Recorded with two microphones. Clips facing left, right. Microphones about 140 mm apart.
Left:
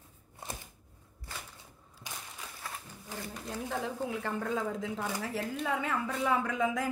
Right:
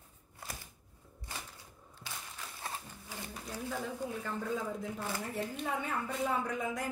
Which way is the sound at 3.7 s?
90° left.